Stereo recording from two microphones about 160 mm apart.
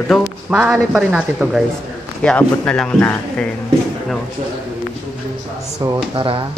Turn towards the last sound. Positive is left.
turn(degrees=-35)  # may be behind; listen again after turning